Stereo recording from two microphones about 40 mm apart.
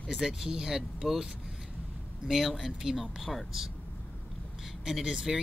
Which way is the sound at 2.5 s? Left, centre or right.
Centre.